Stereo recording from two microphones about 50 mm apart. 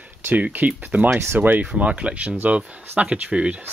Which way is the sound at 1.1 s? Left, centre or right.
Right.